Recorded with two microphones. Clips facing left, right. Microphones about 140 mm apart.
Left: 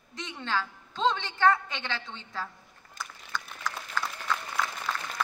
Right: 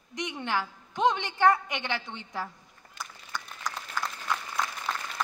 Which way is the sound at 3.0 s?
45° left (ahead or behind).